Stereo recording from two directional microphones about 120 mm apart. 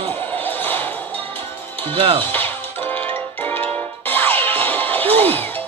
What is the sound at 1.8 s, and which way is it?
Speech, 50° right (ahead or behind).